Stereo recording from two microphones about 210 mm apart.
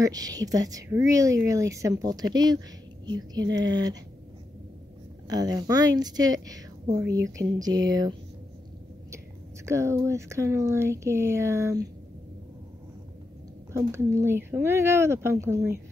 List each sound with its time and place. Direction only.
0.0 s speech: 15° right (ahead or behind)
5.3 s speech: 20° right (ahead or behind)
9.7 s speech: 15° right (ahead or behind)
13.7 s speech: 15° right (ahead or behind)